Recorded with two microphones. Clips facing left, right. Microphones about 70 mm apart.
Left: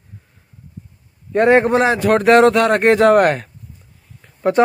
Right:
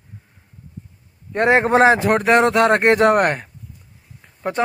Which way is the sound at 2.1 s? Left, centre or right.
Centre.